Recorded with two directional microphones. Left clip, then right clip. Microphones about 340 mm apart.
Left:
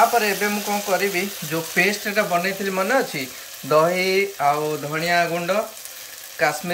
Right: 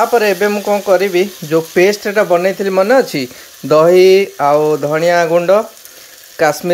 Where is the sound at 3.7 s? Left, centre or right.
Right.